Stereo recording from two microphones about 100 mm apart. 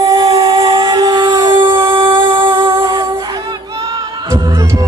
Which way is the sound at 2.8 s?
50° right (ahead or behind).